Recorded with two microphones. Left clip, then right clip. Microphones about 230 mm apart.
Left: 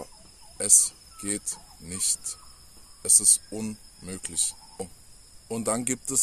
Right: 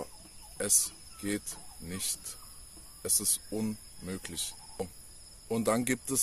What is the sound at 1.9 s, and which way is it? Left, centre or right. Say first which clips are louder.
Speech: left 7 dB; centre.